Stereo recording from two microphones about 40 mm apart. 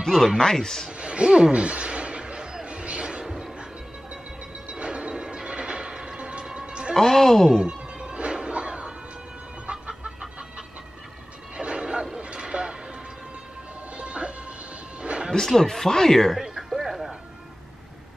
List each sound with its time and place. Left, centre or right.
0.0 s speech: centre
0.9 s a sound: right
2.6 s music: right
4.6 s music: right
7.0 s speech: centre
7.6 s music: right
9.7 s chicken: right
11.5 s music: right
12.2 s a sound: right
13.9 s music: right
15.3 s speech: centre
16.8 s music: centre